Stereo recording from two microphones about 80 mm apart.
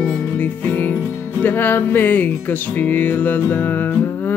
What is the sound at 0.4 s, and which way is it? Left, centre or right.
Music, left.